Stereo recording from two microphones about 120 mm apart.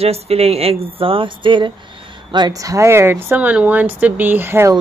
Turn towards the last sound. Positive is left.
turn(degrees=-20)  # may be behind; listen again after turning